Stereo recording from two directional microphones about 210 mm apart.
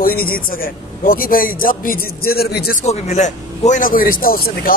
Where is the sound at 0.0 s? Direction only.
45° left (ahead or behind).